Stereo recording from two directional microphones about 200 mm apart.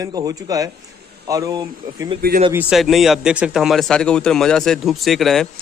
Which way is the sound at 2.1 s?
45° right (ahead or behind).